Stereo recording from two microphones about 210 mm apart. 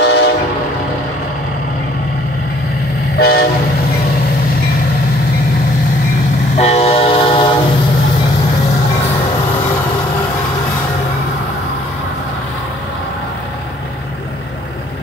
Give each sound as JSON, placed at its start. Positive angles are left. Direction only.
{"t": 0.0, "sound": "train", "side_deg": 55}
{"t": 3.2, "sound": "train", "side_deg": 45}
{"t": 6.5, "sound": "train", "side_deg": 30}